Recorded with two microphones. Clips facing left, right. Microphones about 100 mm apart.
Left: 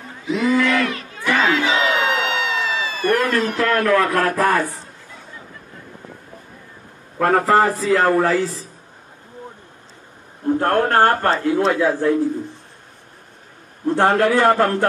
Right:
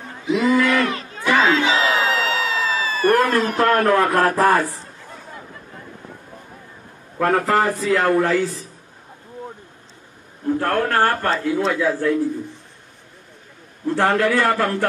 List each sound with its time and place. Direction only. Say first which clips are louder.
0.4 s battle cry: even; 40° right (ahead or behind)
7.3 s speech: left 4 dB; 35° left (ahead or behind)
10.4 s a man's voice: left 3 dB; 30° left (ahead or behind)
13.8 s a man's voice: left 2 dB; 20° left (ahead or behind)